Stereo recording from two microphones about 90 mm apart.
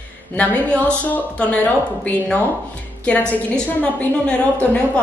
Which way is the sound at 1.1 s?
15° left (ahead or behind).